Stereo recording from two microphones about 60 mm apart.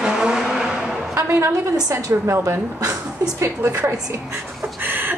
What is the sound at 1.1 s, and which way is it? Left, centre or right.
Speech, right.